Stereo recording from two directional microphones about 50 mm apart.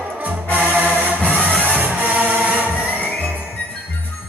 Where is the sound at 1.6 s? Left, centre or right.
Right.